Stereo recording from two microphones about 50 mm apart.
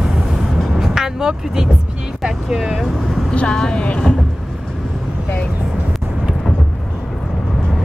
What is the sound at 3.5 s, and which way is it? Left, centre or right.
Speech, centre.